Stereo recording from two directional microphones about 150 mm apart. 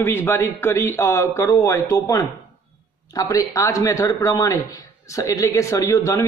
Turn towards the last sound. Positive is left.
turn(degrees=20)  # may be behind; listen again after turning